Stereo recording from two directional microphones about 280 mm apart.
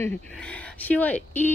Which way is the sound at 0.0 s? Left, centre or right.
Centre.